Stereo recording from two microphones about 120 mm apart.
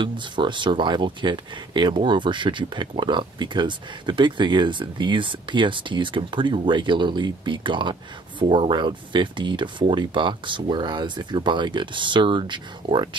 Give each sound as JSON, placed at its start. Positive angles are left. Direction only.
{"t": 0.0, "sound": "speech", "side_deg": -40}